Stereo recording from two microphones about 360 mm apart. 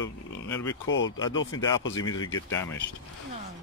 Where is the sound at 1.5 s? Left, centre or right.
Centre.